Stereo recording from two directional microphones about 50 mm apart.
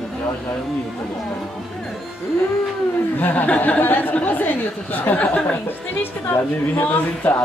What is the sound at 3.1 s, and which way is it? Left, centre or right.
A woman's voice, left.